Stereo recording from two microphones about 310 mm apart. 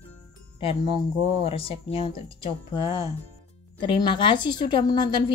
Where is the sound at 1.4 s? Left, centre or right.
Centre.